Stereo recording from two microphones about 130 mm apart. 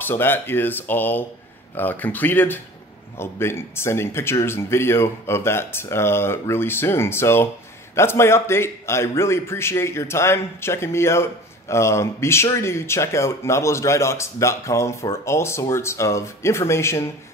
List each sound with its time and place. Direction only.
0.0 s speech: 15° left (ahead or behind)